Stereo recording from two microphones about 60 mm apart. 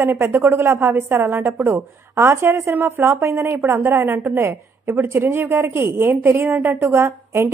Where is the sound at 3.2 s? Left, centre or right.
Right.